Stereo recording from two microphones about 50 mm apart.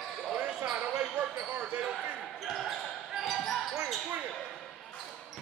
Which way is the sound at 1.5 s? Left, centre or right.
Right.